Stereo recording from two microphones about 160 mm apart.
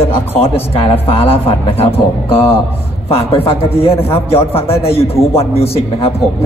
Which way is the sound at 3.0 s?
35° left (ahead or behind).